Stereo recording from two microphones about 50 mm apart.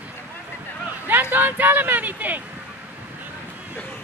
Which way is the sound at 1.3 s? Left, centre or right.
Right.